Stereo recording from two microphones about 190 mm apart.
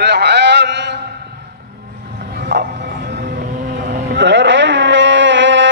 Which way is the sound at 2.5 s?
65° right (ahead or behind).